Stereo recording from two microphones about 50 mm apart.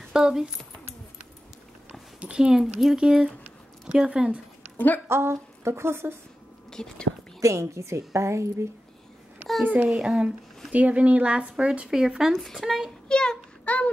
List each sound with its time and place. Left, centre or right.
0.1 s speech: centre
2.1 s speech: centre
4.7 s a woman's voice: left
5.0 s speech: right
6.7 s speech: centre
7.4 s a woman's voice: right
9.8 s speech: centre
10.7 s speech: right; by 12.3 s centre
12.3 s speech: centre
13.1 s a sound: centre
13.7 s a sound: left